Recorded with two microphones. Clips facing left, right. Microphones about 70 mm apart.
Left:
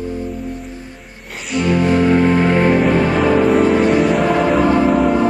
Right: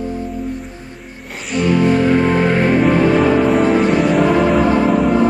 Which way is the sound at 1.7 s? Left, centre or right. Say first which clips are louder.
Even; centre.